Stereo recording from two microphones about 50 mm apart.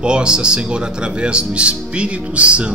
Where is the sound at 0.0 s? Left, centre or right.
Centre.